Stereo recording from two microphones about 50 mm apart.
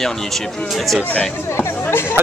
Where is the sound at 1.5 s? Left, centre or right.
Left.